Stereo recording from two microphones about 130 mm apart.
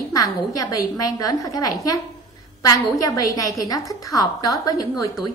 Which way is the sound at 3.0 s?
25° left (ahead or behind).